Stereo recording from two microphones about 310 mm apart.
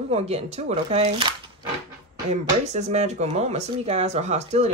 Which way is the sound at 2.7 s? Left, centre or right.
Right.